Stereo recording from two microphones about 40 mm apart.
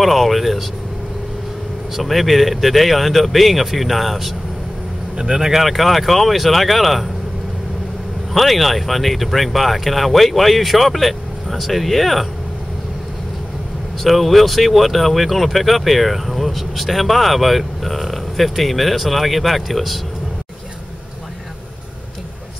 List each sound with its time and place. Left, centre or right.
0.0 s speech: centre
2.0 s speech: centre
5.1 s speech: centre
5.5 s speech: centre
8.3 s speech: centre
14.0 s speech: centre